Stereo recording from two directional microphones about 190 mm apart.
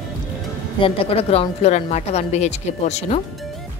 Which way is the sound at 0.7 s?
30° left (ahead or behind).